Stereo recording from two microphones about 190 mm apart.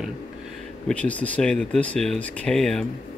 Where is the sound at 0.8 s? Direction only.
5° left (ahead or behind).